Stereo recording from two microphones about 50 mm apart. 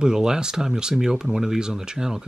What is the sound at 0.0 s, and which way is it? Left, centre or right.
Speech, centre.